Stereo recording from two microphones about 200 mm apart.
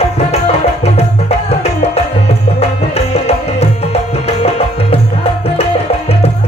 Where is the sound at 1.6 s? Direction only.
30° left (ahead or behind).